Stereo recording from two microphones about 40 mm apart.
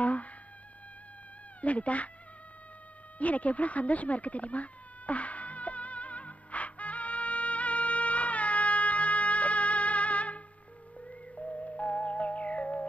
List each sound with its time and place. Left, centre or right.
0.0 s a sound: left
1.6 s speech: left
3.2 s cat: left
11.1 s music: left